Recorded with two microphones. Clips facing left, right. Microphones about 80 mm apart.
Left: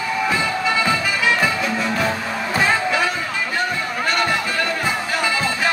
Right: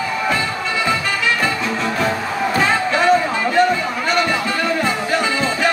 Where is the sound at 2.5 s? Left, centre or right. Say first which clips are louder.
Even; centre.